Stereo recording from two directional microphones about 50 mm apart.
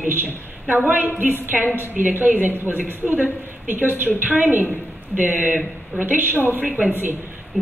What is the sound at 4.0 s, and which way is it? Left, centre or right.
A woman's voice, right.